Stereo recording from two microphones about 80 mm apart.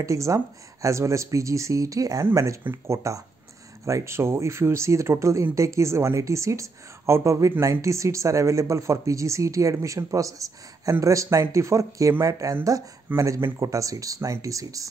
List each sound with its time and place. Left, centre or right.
0.0 s speech: right